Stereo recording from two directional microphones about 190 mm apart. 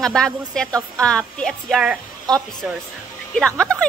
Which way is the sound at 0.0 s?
5° left (ahead or behind).